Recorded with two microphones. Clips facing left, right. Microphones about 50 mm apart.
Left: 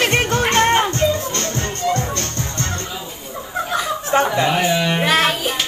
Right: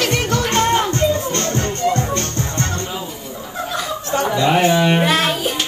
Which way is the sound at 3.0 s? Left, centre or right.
Left.